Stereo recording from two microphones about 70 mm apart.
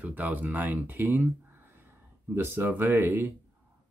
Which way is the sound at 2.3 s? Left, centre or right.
Right.